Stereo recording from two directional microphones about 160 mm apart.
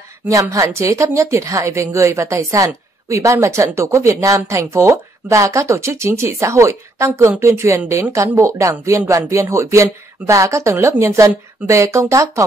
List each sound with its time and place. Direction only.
0.3 s a woman's voice: 20° right (ahead or behind)